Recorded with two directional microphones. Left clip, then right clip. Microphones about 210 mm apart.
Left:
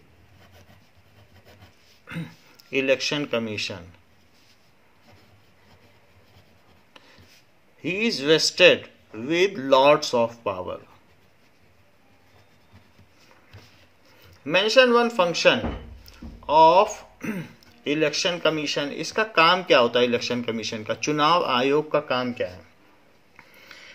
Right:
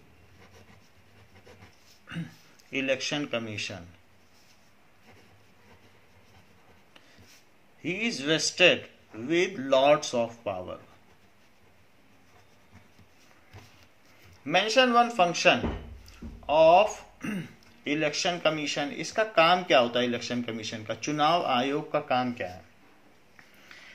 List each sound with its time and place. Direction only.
2.0 s speech: 40° left (ahead or behind)
7.8 s speech: 45° left (ahead or behind)
14.4 s speech: 40° left (ahead or behind)
23.3 s a sound: 45° left (ahead or behind)